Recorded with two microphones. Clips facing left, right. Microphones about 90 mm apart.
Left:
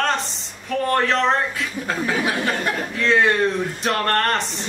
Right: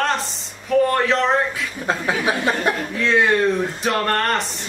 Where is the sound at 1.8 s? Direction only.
20° right (ahead or behind).